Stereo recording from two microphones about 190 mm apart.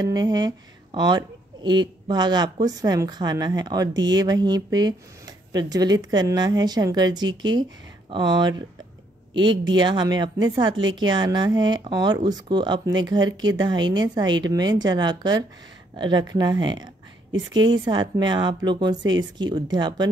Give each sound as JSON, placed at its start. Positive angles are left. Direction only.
{"t": 0.0, "sound": "speech", "side_deg": -20}